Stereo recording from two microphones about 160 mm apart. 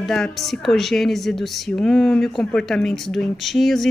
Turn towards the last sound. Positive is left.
turn(degrees=0)  # may be behind; listen again after turning